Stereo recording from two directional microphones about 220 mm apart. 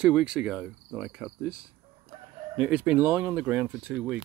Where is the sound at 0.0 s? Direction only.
5° right (ahead or behind).